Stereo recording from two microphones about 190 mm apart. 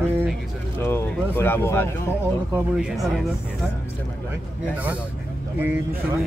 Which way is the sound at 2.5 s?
5° right (ahead or behind).